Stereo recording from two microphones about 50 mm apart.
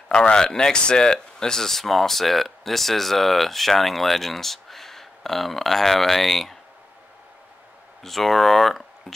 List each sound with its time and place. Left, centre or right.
0.1 s speech: centre
8.0 s speech: centre